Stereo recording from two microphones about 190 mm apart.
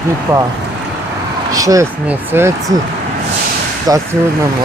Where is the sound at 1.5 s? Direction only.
15° right (ahead or behind).